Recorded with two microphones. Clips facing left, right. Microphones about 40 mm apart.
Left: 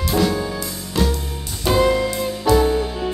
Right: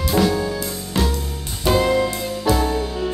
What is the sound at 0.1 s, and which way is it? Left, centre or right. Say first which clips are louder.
Music: right 1 dB; centre.